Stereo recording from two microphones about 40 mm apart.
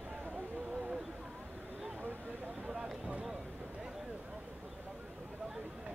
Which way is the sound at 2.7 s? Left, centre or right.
Right.